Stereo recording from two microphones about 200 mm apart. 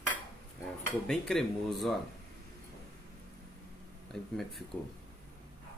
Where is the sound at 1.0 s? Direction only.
Centre (ahead or behind).